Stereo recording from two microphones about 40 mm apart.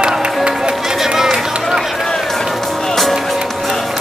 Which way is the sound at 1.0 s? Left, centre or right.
Centre.